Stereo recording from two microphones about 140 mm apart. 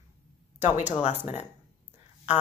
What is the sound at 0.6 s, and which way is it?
Speech, 55° left (ahead or behind).